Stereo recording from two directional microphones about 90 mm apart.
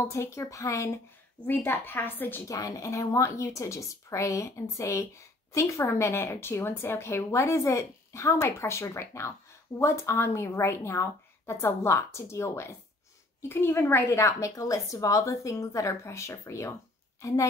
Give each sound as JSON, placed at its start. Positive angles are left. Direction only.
{"t": 0.0, "sound": "speech", "side_deg": 30}
{"t": 1.4, "sound": "a woman's voice", "side_deg": 20}
{"t": 2.4, "sound": "a woman's voice", "side_deg": 40}